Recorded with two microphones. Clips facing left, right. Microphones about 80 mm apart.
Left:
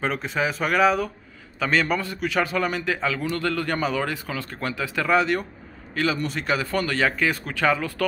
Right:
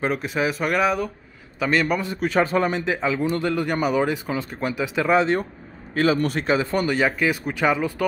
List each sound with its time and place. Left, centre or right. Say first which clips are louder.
0.0 s speech: right 2 dB; centre
2.1 s a man's voice: right 7 dB; right
6.4 s speech: right 3 dB; right